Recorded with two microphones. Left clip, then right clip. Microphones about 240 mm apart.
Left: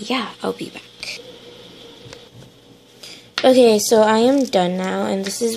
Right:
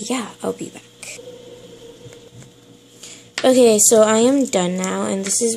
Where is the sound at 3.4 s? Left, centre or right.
Centre.